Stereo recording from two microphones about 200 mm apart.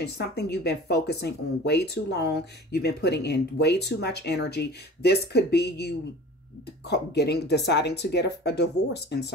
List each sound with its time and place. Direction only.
0.0 s speech: 55° left (ahead or behind)